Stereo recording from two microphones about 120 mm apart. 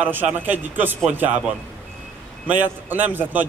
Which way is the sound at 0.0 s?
15° right (ahead or behind).